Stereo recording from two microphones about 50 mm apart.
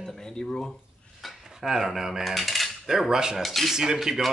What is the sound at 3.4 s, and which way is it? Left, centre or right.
Speech, centre.